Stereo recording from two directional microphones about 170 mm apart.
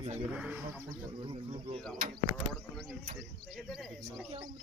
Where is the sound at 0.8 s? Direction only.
35° right (ahead or behind).